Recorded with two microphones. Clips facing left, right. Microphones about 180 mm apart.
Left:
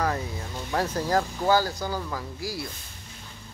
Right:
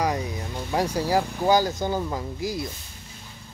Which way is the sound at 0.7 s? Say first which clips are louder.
Right 2 dB; 15° right (ahead or behind).